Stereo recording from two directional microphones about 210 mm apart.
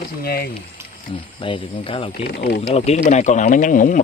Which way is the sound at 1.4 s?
25° left (ahead or behind).